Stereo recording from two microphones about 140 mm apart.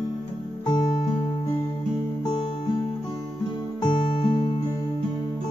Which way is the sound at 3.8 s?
40° left (ahead or behind).